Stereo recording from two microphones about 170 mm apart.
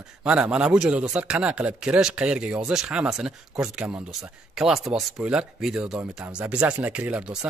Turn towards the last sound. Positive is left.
turn(degrees=-5)  # may be behind; listen again after turning